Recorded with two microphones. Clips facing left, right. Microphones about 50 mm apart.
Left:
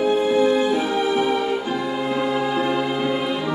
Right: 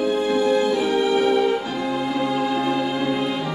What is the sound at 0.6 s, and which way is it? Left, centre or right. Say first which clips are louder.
Music: right 1 dB; centre.